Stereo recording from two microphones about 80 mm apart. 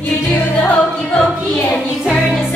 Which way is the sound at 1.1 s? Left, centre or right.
Centre.